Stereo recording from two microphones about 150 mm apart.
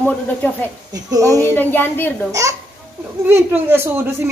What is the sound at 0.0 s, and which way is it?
Speech, 10° left (ahead or behind).